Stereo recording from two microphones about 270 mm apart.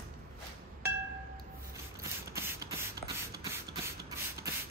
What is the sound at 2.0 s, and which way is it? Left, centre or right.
Beatboxing, centre.